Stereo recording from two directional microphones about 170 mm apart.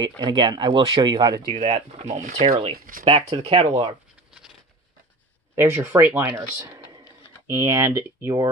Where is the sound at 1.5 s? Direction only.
35° right (ahead or behind).